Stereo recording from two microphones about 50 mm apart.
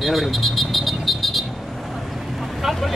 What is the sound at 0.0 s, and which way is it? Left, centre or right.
Vehicle, centre.